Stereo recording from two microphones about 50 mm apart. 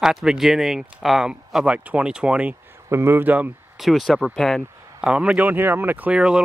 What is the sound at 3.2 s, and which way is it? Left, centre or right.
Speech, right.